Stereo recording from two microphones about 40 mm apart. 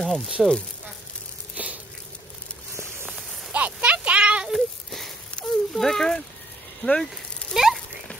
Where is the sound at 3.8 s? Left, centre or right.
Right.